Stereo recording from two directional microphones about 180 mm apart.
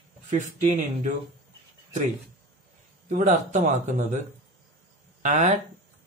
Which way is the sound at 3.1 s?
40° right (ahead or behind).